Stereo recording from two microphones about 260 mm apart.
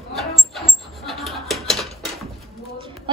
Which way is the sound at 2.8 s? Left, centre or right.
Centre.